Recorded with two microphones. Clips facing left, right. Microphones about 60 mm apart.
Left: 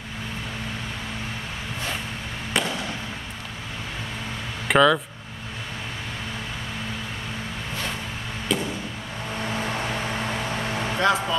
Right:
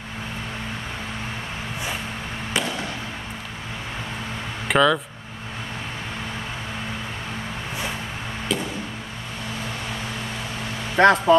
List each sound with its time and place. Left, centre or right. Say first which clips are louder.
2.6 s fireworks: even; centre
4.6 s speech: left 1 dB; centre
8.5 s a sound: left 1 dB; centre
11.0 s speech: right 8 dB; right